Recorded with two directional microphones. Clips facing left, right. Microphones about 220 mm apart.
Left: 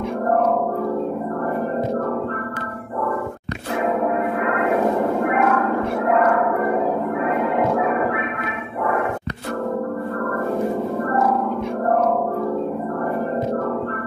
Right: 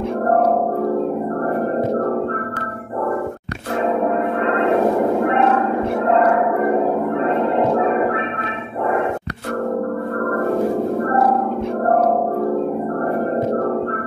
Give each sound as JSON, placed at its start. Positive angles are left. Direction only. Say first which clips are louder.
{"t": 4.4, "sound": "music", "louder": "right 4 dB", "side_deg": -30}
{"t": 10.2, "sound": "music", "louder": "right 5 dB", "side_deg": -50}
{"t": 11.1, "sound": "music", "louder": "right 2 dB", "side_deg": -35}